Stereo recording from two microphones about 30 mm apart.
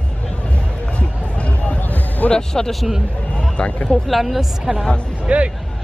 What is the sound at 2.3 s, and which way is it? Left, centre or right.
Speech, left.